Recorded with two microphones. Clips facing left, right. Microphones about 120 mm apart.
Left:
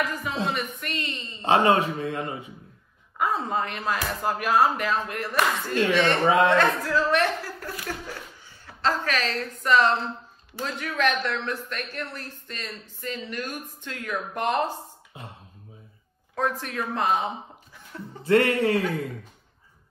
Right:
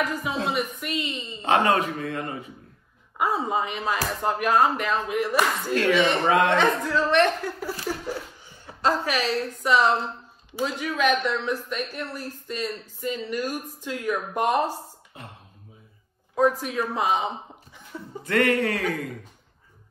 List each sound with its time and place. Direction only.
0.0 s speech: centre (ahead or behind)
1.4 s a man's voice: 30° left (ahead or behind)
3.2 s speech: 5° right (ahead or behind)
6.2 s a man's voice: 30° left (ahead or behind)
6.5 s speech: centre (ahead or behind)
8.1 s a woman's voice: 15° right (ahead or behind)
16.3 s speech: 5° right (ahead or behind)
18.2 s a man's voice: 30° left (ahead or behind)